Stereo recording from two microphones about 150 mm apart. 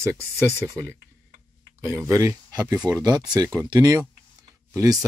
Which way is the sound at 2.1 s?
20° right (ahead or behind).